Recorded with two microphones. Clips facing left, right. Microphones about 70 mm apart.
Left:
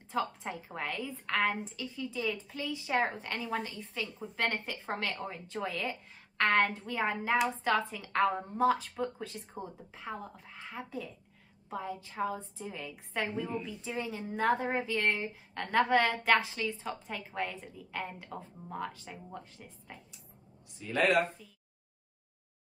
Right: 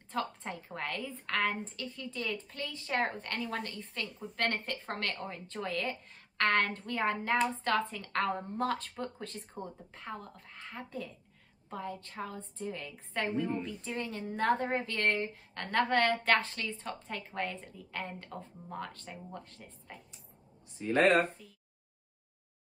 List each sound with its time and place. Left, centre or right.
0.1 s a woman's voice: centre
20.7 s speech: right